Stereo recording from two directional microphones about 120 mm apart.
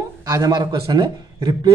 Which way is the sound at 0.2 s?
30° right (ahead or behind).